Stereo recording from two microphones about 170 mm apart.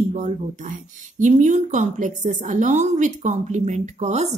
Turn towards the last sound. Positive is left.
turn(degrees=-40)  # may be behind; listen again after turning